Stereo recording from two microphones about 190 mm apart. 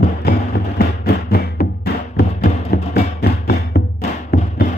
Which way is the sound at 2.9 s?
55° left (ahead or behind).